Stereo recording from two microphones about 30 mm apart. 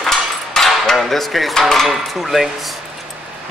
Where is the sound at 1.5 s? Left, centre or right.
Centre.